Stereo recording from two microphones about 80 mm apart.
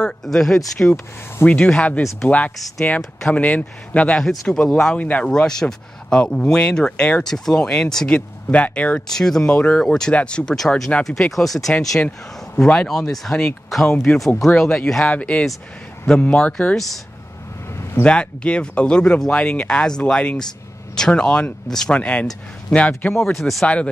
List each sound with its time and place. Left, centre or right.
0.0 s speech: centre
1.4 s speech: centre
16.7 s speech: centre
18.0 s speech: centre